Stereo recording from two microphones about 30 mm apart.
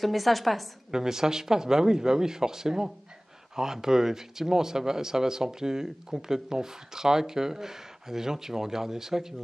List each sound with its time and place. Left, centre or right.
0.0 s a woman's voice: centre
0.9 s speech: centre